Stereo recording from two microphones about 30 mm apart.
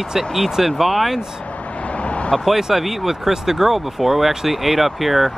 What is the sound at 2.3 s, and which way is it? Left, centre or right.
Speech, centre.